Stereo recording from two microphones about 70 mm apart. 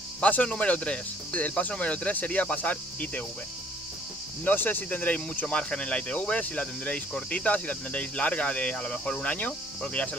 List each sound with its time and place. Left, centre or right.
0.2 s speech: centre
4.5 s speech: left